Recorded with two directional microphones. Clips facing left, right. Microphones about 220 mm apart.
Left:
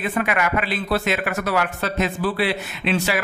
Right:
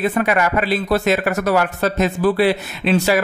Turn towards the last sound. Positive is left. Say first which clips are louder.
# right 6 dB
turn(degrees=-40)  # may be behind; listen again after turning